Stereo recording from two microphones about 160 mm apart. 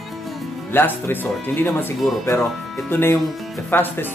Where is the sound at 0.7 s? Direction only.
10° left (ahead or behind).